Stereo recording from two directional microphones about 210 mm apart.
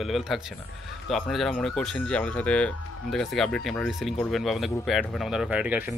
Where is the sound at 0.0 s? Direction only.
Centre (ahead or behind).